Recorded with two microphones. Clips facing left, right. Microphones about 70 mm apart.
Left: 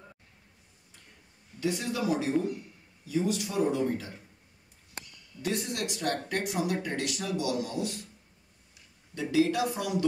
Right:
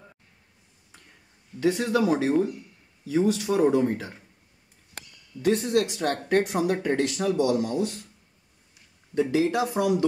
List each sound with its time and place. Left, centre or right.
1.6 s speech: right
5.4 s speech: right
9.1 s speech: right